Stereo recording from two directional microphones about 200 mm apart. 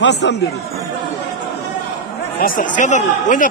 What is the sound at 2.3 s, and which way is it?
A man's voice, 45° left (ahead or behind).